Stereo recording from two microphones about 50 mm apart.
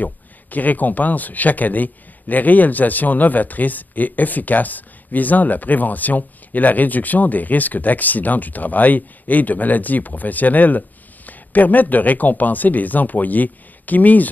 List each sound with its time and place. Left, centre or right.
0.0 s speech: left